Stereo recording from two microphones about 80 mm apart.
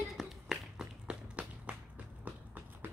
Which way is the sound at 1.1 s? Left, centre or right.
Centre.